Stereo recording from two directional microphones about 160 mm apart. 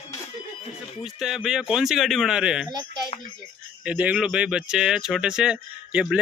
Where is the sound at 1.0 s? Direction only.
5° right (ahead or behind).